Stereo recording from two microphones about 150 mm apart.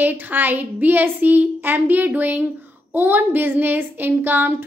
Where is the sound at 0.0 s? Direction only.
10° right (ahead or behind).